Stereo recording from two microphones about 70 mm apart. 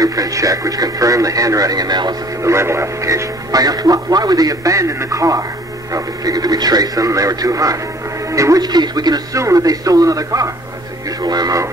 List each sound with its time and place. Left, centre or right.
0.0 s speech: right
2.4 s a man's voice: right
8.6 s speech: right
9.4 s speech: right
11.1 s speech: right